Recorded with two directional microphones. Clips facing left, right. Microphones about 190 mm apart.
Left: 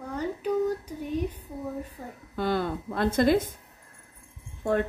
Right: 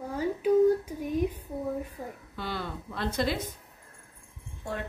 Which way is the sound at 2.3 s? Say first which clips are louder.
Left 9 dB; 50° left (ahead or behind).